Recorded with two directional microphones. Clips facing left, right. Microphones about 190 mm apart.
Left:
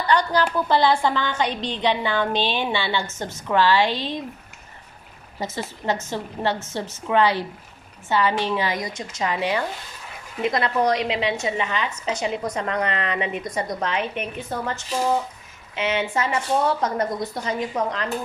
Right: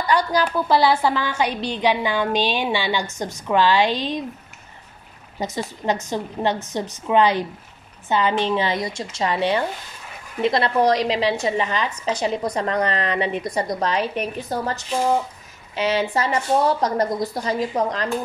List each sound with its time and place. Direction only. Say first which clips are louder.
0.0 s a woman's voice: right 1 dB; 10° right (ahead or behind)
5.4 s a woman's voice: right 3 dB; 15° right (ahead or behind); by 18.0 s 35° right (ahead or behind)